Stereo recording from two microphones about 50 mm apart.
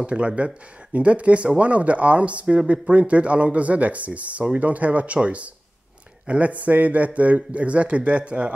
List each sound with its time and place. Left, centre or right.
0.0 s a man's voice: right